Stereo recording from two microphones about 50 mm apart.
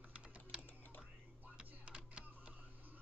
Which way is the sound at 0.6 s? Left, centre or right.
Left.